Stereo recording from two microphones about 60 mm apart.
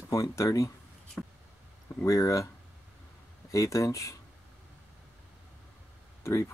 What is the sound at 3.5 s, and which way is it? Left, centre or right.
Speech, left.